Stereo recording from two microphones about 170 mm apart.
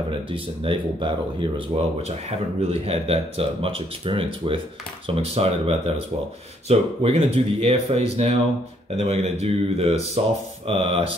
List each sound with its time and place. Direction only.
0.3 s speech: 30° right (ahead or behind)